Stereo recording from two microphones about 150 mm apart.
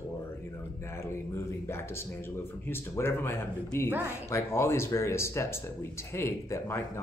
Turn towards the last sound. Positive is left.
turn(degrees=20)  # may be behind; listen again after turning